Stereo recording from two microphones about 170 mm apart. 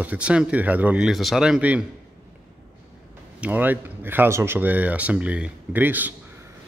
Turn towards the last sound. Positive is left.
turn(degrees=-10)  # may be behind; listen again after turning